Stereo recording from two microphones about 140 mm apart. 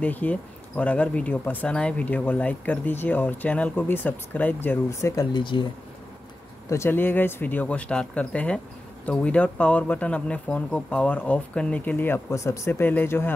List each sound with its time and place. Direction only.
0.0 s speech: 10° left (ahead or behind)
5.3 s speech: 35° left (ahead or behind)
6.7 s speech: 15° left (ahead or behind)